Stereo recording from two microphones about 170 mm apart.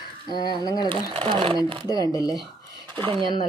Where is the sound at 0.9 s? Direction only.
30° right (ahead or behind).